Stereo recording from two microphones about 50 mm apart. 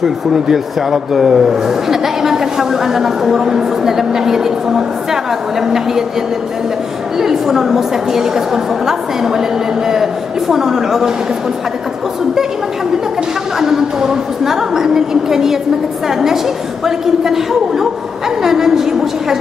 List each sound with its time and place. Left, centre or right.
0.0 s speech: centre
7.2 s speech: centre
10.5 s speech: centre
13.6 s speech: centre
16.8 s speech: centre